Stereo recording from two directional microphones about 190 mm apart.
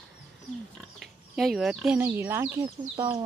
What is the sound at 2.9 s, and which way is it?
Speech, 25° right (ahead or behind).